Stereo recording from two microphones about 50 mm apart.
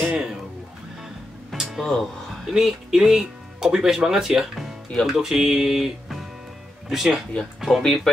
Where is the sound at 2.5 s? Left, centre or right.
Centre.